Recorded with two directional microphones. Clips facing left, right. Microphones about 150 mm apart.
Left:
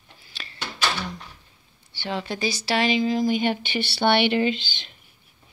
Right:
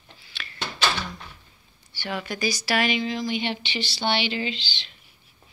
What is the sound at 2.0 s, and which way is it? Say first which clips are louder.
Speech: left 2 dB; 25° left (ahead or behind).